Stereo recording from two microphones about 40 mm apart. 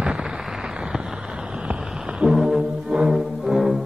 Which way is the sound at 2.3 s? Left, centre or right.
Centre.